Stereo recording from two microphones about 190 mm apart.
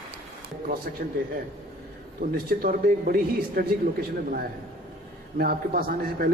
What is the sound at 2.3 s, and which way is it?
A man's voice, 50° right (ahead or behind).